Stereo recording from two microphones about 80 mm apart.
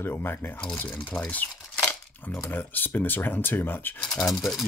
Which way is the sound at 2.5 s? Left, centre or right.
Left.